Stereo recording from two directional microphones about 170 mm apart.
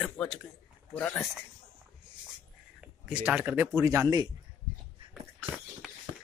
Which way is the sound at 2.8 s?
10° right (ahead or behind).